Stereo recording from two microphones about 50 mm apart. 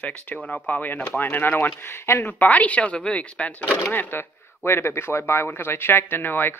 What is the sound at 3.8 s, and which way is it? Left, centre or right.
Speech, left.